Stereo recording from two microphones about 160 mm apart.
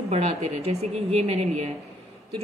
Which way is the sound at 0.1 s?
40° right (ahead or behind).